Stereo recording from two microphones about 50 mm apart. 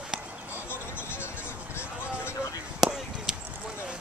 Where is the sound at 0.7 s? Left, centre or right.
Left.